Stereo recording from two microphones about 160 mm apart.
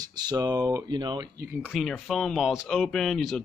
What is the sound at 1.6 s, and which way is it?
Speech, centre (ahead or behind).